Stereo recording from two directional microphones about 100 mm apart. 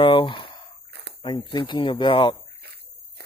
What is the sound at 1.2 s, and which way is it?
Speech, 50° left (ahead or behind).